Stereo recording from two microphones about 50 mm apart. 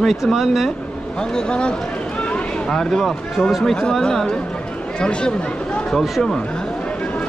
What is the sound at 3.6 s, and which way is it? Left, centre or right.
Speech, centre.